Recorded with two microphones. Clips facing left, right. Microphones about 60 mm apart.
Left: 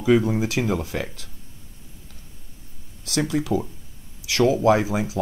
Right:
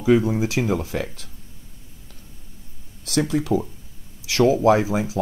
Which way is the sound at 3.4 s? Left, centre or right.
Centre.